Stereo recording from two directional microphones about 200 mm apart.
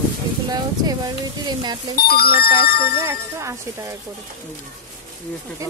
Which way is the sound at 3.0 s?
15° right (ahead or behind).